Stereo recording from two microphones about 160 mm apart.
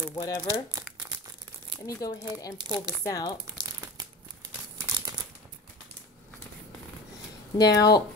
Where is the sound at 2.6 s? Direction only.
25° right (ahead or behind).